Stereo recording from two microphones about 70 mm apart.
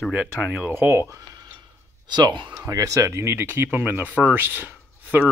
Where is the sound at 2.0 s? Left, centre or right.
Right.